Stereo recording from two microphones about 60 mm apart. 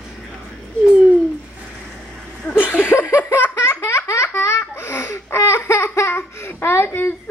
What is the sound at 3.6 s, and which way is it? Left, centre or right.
Laughter, left.